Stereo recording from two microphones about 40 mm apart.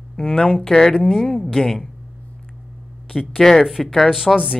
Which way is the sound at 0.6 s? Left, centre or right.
Centre.